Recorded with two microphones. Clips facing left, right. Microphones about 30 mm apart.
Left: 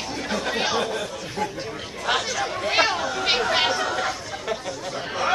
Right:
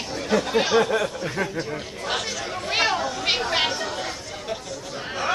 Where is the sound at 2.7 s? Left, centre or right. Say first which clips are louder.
Left 1 dB; centre.